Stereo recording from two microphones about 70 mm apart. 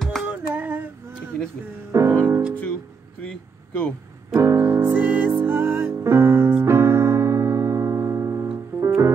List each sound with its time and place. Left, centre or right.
0.0 s female singing: centre
0.3 s female singing: right
1.9 s music: right
3.2 s speech: centre
4.4 s music: right